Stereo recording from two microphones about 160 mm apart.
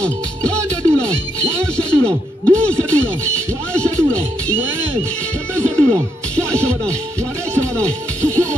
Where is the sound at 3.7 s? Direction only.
5° left (ahead or behind).